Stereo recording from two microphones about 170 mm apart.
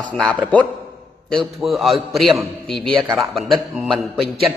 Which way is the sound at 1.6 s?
Centre (ahead or behind).